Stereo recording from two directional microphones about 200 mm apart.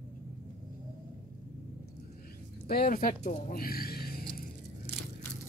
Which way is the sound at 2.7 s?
45° left (ahead or behind).